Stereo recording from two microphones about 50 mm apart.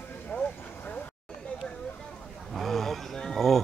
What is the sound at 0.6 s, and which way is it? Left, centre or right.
Vehicle, left.